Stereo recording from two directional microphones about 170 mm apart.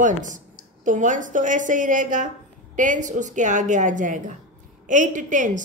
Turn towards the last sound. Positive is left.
turn(degrees=-50)  # may be behind; listen again after turning